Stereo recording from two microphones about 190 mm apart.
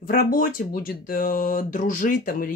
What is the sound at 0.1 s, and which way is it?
Speech, 45° left (ahead or behind).